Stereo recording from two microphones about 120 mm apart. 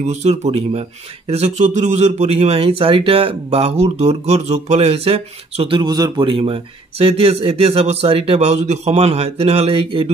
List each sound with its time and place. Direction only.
0.0 s speech: 65° right (ahead or behind)
5.8 s speech: 35° right (ahead or behind); by 10.0 s 50° right (ahead or behind)